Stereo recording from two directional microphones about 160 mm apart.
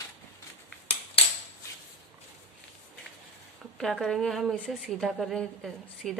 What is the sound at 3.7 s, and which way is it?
A woman's voice, centre (ahead or behind).